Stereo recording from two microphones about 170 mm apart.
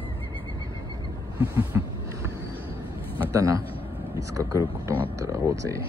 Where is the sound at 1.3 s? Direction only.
15° right (ahead or behind).